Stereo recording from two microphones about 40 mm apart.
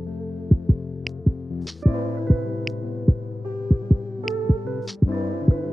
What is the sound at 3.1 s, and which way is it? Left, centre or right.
Heart sounds, centre.